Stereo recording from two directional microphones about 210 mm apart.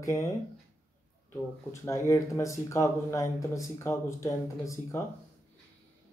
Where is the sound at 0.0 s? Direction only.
15° left (ahead or behind).